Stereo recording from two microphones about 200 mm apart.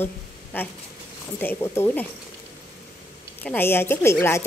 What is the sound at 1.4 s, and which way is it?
Speech, 10° left (ahead or behind).